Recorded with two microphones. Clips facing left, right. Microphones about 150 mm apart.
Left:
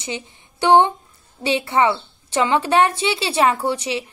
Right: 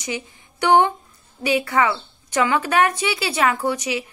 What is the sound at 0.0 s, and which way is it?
A woman's voice, 25° left (ahead or behind).